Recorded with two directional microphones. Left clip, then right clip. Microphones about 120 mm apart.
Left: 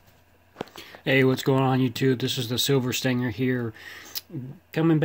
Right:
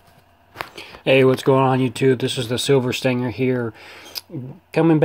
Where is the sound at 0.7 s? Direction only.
5° left (ahead or behind).